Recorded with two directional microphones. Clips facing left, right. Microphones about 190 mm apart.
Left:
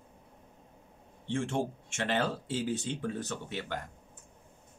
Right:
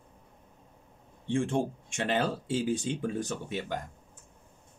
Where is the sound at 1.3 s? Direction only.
15° right (ahead or behind).